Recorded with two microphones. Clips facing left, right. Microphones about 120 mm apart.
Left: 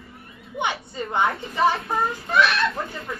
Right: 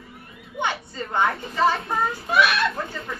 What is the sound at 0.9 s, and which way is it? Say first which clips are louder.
Speech: left 1 dB; 20° left (ahead or behind).